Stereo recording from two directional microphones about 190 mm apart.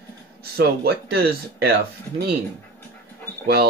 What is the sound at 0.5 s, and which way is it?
Speech, 55° right (ahead or behind).